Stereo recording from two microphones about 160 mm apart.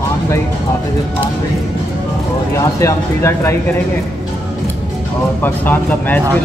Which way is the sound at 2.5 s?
15° left (ahead or behind).